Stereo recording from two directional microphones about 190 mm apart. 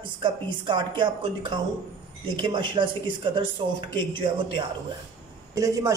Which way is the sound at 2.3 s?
25° right (ahead or behind).